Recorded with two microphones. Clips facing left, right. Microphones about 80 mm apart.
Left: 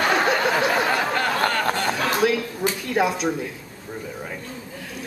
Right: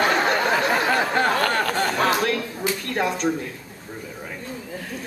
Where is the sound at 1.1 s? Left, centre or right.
Right.